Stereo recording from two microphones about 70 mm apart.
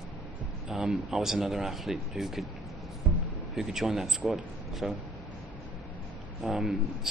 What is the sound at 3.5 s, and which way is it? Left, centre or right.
A man's voice, centre.